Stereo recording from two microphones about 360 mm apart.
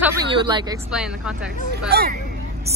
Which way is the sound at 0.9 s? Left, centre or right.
Centre.